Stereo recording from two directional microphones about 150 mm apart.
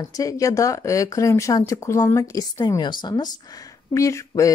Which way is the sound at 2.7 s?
30° left (ahead or behind).